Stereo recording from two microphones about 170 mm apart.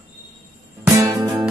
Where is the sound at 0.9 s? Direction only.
20° right (ahead or behind).